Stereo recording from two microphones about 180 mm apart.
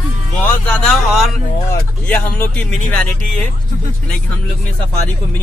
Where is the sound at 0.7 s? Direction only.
Centre (ahead or behind).